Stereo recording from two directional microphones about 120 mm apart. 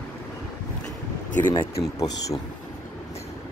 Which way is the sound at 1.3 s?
15° left (ahead or behind).